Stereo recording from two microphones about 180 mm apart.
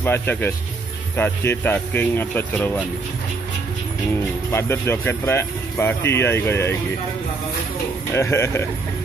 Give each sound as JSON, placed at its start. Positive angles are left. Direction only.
{"t": 0.0, "sound": "speech", "side_deg": 10}
{"t": 4.5, "sound": "speech", "side_deg": 15}
{"t": 8.1, "sound": "speech", "side_deg": 15}